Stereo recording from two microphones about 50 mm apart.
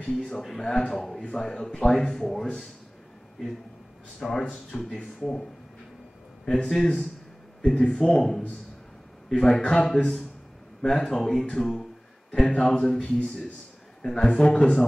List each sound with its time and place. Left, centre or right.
0.4 s speech: centre
4.2 s speech: centre